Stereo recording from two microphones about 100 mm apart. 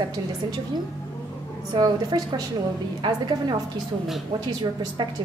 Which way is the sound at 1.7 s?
45° right (ahead or behind).